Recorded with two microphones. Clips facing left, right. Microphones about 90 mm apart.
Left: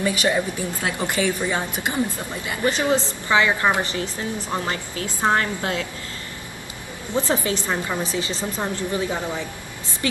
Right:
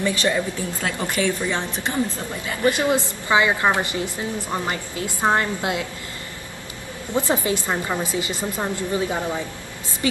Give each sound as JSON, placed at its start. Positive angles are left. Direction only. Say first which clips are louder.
{"t": 0.0, "sound": "a woman's voice", "louder": "even", "side_deg": 15}
{"t": 2.9, "sound": "a woman's voice", "louder": "even", "side_deg": -15}
{"t": 7.2, "sound": "a woman's voice", "louder": "right 1 dB", "side_deg": -20}